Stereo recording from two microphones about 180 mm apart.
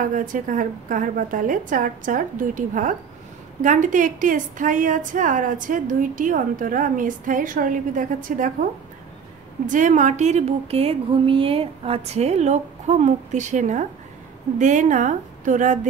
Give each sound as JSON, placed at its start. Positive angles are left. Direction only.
{"t": 0.0, "sound": "a woman's voice", "side_deg": -45}
{"t": 9.7, "sound": "a woman's voice", "side_deg": -45}